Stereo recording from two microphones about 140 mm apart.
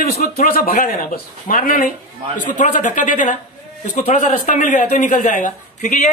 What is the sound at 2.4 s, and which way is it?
A woman's voice, 65° left (ahead or behind).